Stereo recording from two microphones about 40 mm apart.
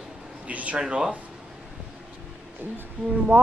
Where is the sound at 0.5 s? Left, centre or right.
Right.